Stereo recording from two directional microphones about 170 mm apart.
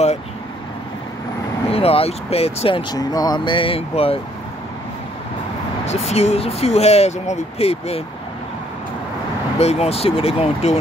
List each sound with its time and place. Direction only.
1.7 s speech: 35° left (ahead or behind)
5.9 s speech: 40° left (ahead or behind)
9.6 s speech: 40° left (ahead or behind)